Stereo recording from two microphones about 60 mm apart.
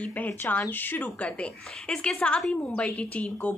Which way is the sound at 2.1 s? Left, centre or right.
Centre.